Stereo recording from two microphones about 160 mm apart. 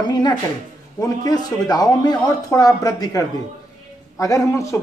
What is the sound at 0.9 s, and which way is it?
A man's voice, 25° left (ahead or behind).